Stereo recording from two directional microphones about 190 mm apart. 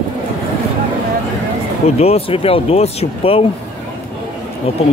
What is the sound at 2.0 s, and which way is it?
Speech, 30° left (ahead or behind).